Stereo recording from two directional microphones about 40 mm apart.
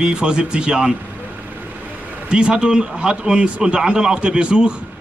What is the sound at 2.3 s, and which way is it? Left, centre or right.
Speech, right.